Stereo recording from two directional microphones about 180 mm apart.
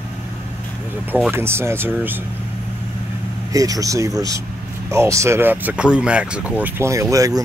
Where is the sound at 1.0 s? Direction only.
10° right (ahead or behind).